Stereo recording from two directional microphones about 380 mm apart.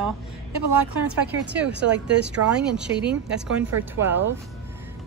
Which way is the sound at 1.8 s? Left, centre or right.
Right.